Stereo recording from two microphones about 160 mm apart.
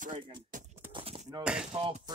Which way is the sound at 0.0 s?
55° right (ahead or behind).